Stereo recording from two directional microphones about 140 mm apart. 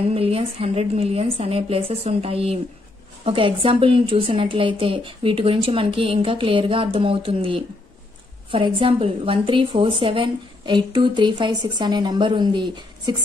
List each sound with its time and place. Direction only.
0.1 s a woman's voice: 45° right (ahead or behind)